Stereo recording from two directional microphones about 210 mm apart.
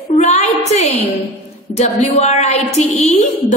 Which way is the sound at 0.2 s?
35° left (ahead or behind).